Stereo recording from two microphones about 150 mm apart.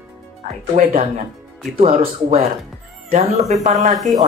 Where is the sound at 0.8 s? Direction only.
50° right (ahead or behind).